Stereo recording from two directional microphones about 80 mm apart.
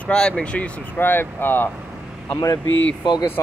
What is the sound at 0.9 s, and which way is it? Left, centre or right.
Speech, left.